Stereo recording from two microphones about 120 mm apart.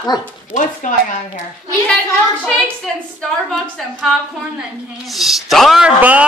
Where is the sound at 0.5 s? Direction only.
90° left.